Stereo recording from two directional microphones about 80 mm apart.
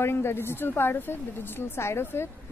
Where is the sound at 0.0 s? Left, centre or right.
Left.